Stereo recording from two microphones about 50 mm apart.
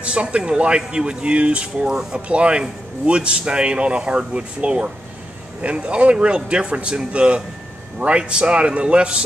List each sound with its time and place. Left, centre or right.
0.0 s speech: right